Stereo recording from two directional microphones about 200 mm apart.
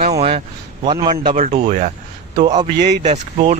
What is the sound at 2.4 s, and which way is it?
Speech, 20° right (ahead or behind).